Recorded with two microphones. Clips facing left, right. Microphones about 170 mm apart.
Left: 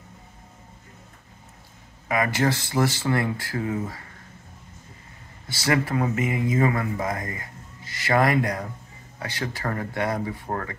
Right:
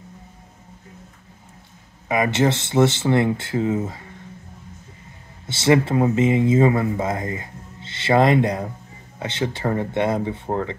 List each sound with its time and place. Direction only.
2.0 s speech: 20° right (ahead or behind)
5.5 s speech: 25° right (ahead or behind)